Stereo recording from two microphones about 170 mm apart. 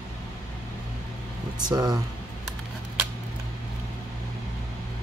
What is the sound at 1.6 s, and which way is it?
Speech, 25° right (ahead or behind).